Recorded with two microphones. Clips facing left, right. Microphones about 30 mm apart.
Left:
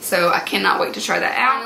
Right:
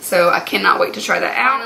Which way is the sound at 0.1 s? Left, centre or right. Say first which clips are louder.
Right 3 dB; centre.